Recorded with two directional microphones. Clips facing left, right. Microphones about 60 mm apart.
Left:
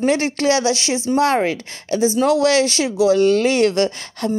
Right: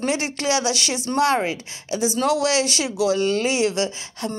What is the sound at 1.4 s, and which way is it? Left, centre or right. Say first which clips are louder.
Speech: left 5 dB; left.